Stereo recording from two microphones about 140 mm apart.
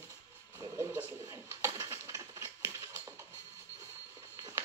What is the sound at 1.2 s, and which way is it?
Bird, 20° right (ahead or behind).